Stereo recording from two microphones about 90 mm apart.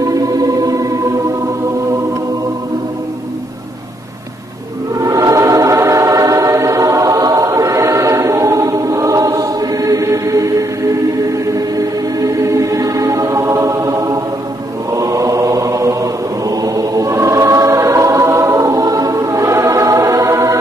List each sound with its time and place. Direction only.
0.0 s music: 40° right (ahead or behind)
4.9 s a sound: 40° right (ahead or behind)
14.9 s chant: 40° right (ahead or behind)